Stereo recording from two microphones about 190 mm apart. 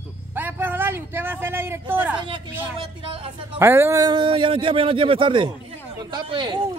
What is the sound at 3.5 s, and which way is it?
A man's voice, 10° right (ahead or behind).